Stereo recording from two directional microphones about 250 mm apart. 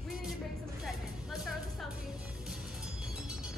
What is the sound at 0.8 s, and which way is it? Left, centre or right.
Music, centre.